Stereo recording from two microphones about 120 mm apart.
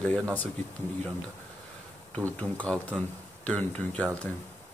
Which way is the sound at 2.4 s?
10° left (ahead or behind).